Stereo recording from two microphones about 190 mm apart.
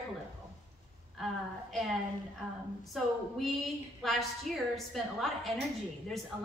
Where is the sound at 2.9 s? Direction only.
Centre (ahead or behind).